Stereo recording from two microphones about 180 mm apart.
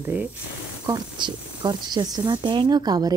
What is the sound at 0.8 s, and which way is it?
Speech, 25° right (ahead or behind).